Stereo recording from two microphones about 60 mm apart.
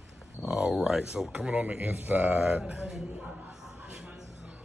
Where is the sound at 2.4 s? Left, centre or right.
Centre.